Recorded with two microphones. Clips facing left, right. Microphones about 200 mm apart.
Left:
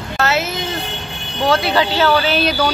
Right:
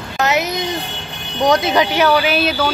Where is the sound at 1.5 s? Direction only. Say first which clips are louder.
Right 1 dB; 20° right (ahead or behind).